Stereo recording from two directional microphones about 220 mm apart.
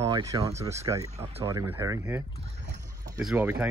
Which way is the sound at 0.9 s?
15° right (ahead or behind).